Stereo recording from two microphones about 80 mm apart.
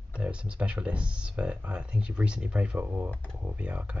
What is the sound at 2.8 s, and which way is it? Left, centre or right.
Speech, right.